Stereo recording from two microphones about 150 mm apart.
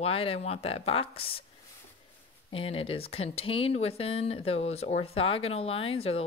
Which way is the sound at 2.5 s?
40° left (ahead or behind).